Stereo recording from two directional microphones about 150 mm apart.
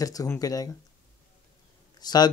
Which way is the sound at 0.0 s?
25° left (ahead or behind).